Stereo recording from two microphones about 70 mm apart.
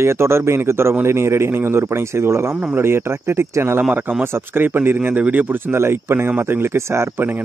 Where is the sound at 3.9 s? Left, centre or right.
Right.